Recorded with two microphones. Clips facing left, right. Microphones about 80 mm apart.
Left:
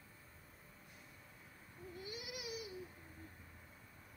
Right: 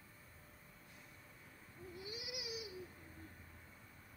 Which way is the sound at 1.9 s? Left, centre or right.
Left.